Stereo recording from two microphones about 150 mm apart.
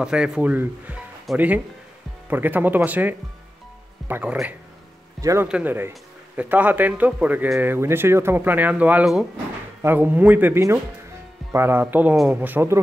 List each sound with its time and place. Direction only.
0.0 s speech: 5° right (ahead or behind)